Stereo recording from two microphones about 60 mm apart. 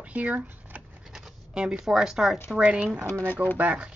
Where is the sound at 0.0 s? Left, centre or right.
Right.